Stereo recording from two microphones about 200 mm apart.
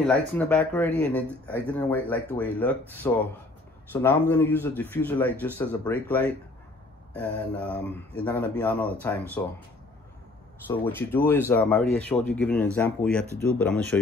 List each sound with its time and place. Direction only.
0.0 s speech: 5° left (ahead or behind)
10.7 s speech: 10° left (ahead or behind)